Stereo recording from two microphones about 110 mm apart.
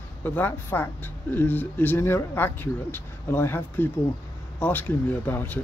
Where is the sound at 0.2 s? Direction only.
15° left (ahead or behind).